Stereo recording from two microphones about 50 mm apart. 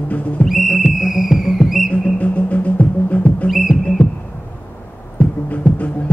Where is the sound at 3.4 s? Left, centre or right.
Centre.